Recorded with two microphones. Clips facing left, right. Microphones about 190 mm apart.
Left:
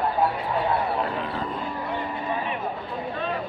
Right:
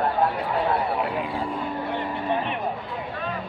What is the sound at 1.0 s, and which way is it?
Speech, 10° right (ahead or behind).